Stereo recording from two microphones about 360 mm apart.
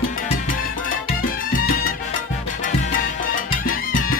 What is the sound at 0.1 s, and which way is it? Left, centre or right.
Music, left.